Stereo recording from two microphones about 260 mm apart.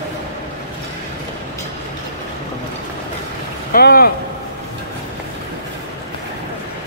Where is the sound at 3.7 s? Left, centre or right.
Left.